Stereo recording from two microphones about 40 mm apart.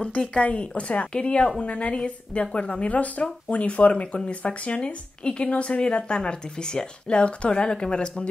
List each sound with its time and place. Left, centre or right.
0.2 s a woman's voice: left